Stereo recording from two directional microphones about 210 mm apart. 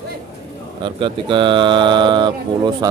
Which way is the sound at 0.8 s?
25° right (ahead or behind).